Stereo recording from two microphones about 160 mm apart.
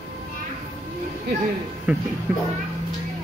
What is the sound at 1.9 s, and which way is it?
Speech, 10° right (ahead or behind).